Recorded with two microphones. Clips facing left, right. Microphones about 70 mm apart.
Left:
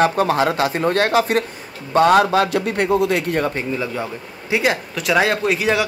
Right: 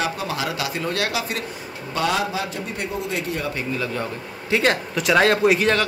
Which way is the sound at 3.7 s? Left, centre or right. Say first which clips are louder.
Left 2 dB; centre.